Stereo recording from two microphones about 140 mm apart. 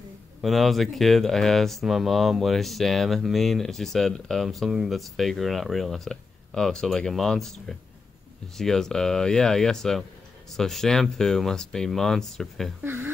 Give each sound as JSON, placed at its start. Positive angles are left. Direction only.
{"t": 0.4, "sound": "speech", "side_deg": 0}
{"t": 12.8, "sound": "speech", "side_deg": -15}